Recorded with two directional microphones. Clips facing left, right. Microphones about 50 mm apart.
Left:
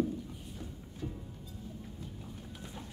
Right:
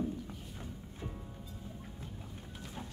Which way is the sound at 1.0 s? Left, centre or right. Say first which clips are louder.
Left 4 dB; right.